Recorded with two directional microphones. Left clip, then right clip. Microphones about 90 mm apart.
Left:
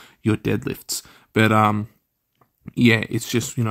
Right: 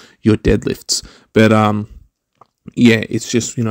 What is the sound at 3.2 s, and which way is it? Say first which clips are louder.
Speech: right 6 dB; 20° right (ahead or behind).